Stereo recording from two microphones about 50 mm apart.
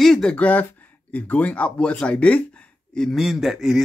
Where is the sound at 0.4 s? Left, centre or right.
Left.